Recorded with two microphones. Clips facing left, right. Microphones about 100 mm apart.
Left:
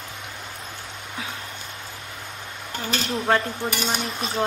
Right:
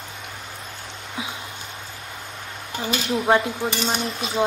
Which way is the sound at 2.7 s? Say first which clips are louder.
Right 2 dB; 15° right (ahead or behind).